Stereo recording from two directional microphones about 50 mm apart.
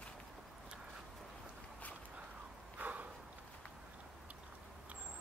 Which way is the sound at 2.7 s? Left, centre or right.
Right.